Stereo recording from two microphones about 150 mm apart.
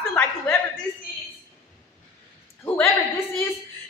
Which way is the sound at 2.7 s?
10° left (ahead or behind).